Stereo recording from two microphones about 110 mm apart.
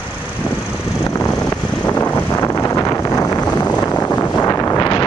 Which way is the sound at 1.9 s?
15° left (ahead or behind).